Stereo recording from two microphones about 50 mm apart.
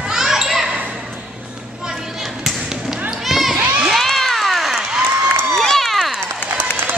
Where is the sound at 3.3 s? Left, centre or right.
Centre.